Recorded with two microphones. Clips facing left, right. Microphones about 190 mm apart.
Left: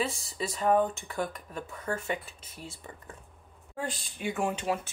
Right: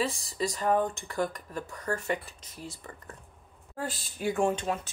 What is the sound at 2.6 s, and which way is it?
Speech, 20° left (ahead or behind).